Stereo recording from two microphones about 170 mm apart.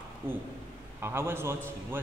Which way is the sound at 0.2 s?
10° right (ahead or behind).